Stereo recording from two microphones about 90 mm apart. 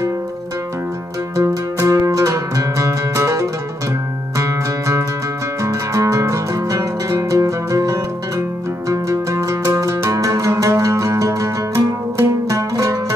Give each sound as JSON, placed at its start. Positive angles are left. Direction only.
{"t": 1.3, "sound": "music", "side_deg": -35}